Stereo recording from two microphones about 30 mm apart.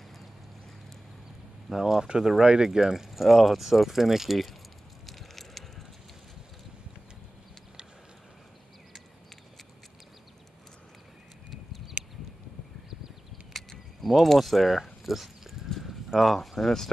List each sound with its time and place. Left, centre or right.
1.7 s speech: centre
2.0 s speech: right
3.1 s speech: centre
5.0 s a sound: centre
13.5 s keys jangling: centre
15.0 s dog: centre
15.8 s livestock: centre
16.3 s speech: centre